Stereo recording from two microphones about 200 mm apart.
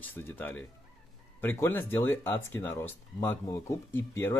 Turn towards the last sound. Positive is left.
turn(degrees=10)  # may be behind; listen again after turning